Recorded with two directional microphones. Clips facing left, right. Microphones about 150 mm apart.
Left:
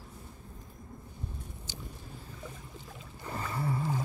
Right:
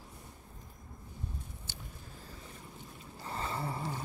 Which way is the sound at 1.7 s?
55° right (ahead or behind).